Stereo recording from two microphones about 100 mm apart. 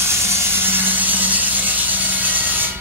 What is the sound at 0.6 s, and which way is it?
Ratchet, 20° right (ahead or behind).